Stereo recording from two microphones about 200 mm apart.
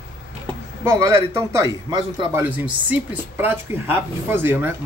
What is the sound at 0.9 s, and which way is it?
Speech, 15° right (ahead or behind).